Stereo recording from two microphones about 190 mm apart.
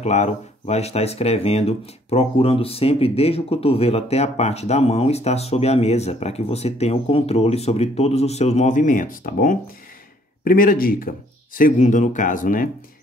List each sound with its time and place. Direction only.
0.0 s speech: 35° left (ahead or behind)